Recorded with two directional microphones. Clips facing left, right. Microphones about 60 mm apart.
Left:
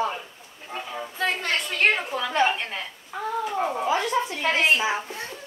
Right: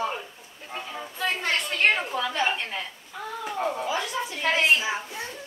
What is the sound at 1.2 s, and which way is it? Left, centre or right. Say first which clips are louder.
Speech: left 1 dB; centre.